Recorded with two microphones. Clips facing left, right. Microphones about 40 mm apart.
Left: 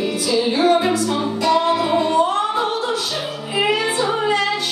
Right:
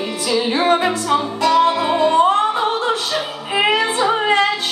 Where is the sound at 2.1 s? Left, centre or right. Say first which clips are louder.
Right 3 dB; right.